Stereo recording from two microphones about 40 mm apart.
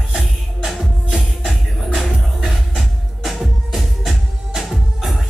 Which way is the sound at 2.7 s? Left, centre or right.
Centre.